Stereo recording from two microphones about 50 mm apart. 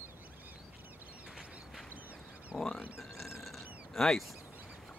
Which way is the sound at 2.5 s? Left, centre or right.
Centre.